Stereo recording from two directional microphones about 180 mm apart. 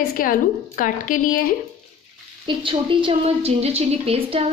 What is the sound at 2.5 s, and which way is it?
A woman's voice, 30° right (ahead or behind).